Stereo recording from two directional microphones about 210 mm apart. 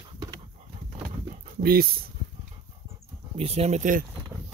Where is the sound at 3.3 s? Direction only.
30° right (ahead or behind).